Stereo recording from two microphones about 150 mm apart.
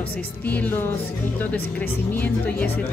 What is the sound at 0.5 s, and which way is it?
Speech, 15° left (ahead or behind).